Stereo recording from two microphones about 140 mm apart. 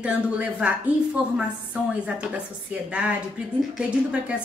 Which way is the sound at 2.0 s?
10° right (ahead or behind).